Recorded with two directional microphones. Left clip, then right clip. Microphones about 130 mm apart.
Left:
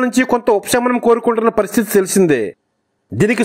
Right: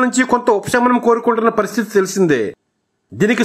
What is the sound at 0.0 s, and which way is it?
Speech, 35° left (ahead or behind).